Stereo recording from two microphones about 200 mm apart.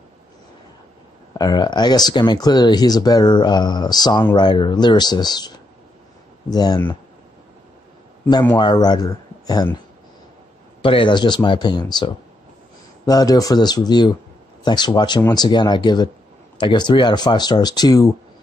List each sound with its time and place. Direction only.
1.4 s speech: 20° left (ahead or behind)
6.5 s speech: 20° left (ahead or behind)
8.5 s speech: 20° left (ahead or behind)
10.8 s speech: 25° left (ahead or behind)